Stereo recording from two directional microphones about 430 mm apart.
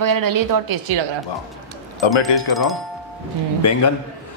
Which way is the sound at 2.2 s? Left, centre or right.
Centre.